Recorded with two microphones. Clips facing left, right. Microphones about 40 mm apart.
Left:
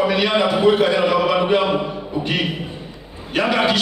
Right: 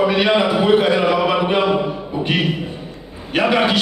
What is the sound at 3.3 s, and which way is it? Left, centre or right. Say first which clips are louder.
Speech: right 2 dB; centre.